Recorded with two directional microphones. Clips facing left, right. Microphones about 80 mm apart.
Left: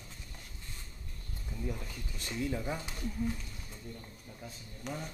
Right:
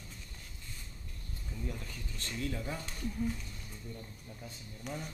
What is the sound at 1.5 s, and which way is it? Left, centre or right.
Speech, centre.